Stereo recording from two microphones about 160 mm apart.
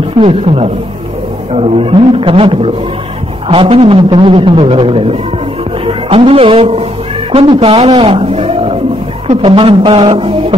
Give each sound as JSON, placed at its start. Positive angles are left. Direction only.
{"t": 0.2, "sound": "a man's voice", "side_deg": -35}